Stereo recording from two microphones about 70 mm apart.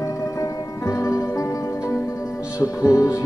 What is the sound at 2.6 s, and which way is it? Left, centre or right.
Speech, left.